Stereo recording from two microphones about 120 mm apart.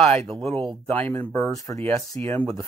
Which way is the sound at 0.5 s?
45° right (ahead or behind).